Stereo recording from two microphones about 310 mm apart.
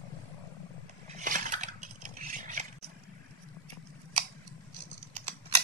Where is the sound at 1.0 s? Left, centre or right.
Right.